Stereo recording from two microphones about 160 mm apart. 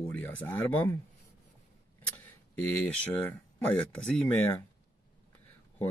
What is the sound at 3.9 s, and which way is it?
Speech, 10° left (ahead or behind).